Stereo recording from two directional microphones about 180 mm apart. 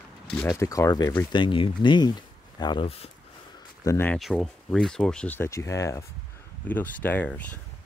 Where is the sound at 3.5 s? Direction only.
15° left (ahead or behind).